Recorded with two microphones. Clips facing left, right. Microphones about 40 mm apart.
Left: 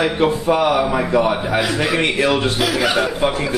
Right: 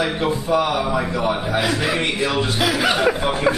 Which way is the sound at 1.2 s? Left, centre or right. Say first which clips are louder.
Left 4 dB; centre.